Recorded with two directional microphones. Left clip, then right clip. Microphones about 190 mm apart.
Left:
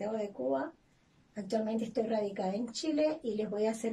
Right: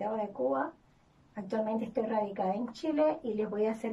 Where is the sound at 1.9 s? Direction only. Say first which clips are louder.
Right 1 dB; 20° left (ahead or behind).